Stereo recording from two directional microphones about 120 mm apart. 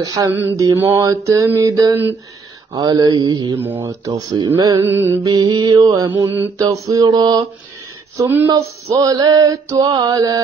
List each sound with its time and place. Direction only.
0.0 s mantra: 30° right (ahead or behind)
3.6 s mantra: 20° right (ahead or behind)
3.9 s mantra: 30° right (ahead or behind)
4.8 s mantra: 20° right (ahead or behind)
5.2 s mantra: 35° right (ahead or behind)
6.1 s mantra: 20° right (ahead or behind); by 7.4 s 35° right (ahead or behind)
8.2 s mantra: 15° right (ahead or behind)
8.5 s mantra: 30° right (ahead or behind)